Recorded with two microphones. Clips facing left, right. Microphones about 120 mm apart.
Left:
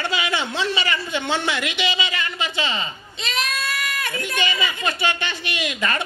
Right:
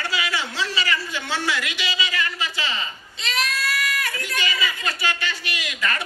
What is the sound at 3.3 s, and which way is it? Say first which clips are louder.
Goat: even; 25° left (ahead or behind).